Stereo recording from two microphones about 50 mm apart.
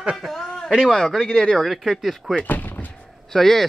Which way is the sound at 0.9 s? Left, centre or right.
Centre.